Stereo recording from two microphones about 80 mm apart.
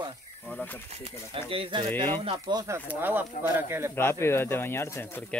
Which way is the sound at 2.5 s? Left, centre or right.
Right.